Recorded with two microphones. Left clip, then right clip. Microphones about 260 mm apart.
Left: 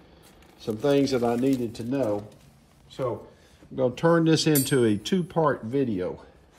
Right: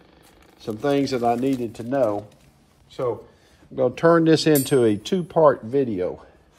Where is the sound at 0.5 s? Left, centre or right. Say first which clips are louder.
Right 1 dB; centre.